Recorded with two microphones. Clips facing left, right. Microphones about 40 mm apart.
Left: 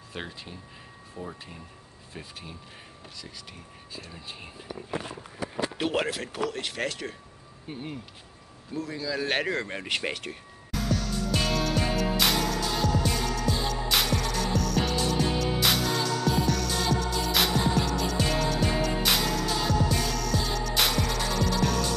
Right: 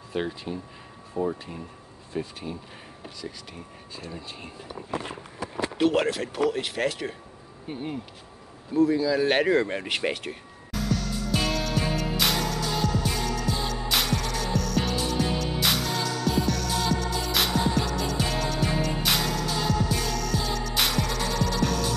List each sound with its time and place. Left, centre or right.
0.1 s speech: centre
1.2 s speech: centre
2.1 s speech: centre
4.0 s speech: centre
5.8 s speech: centre
8.7 s a sound: centre